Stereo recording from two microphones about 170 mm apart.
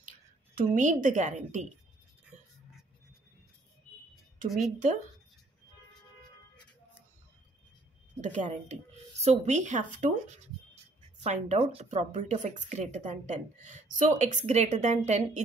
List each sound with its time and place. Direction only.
0.6 s speech: 50° right (ahead or behind)
2.3 s a sound: 45° right (ahead or behind)
4.5 s a woman's voice: centre (ahead or behind)
8.2 s a woman's voice: 45° right (ahead or behind)